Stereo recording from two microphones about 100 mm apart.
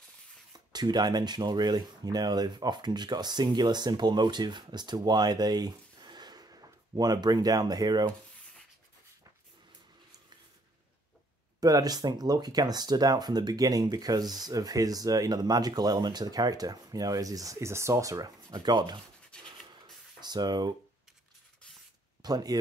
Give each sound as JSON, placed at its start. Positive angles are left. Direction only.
{"t": 0.5, "sound": "speech", "side_deg": -45}
{"t": 11.6, "sound": "speech", "side_deg": -40}
{"t": 19.4, "sound": "a sound", "side_deg": -50}
{"t": 22.2, "sound": "speech", "side_deg": -40}